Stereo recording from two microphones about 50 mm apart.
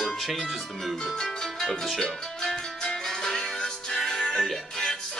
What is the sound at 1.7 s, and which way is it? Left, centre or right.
Music, centre.